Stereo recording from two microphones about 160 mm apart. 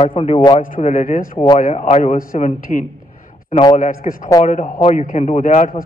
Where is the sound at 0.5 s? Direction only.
55° left (ahead or behind).